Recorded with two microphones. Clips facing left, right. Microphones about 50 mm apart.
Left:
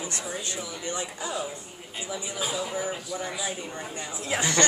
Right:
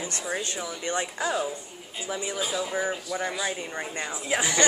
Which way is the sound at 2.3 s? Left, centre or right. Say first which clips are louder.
Even; centre.